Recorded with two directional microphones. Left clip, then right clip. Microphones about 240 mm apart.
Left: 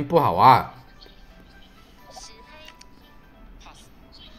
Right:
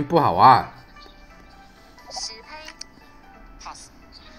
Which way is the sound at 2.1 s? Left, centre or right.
Centre.